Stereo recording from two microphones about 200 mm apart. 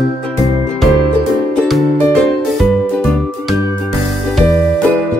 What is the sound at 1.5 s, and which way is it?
Music, 5° left (ahead or behind).